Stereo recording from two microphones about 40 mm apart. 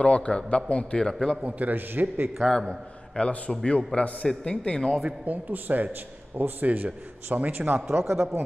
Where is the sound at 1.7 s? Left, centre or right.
Right.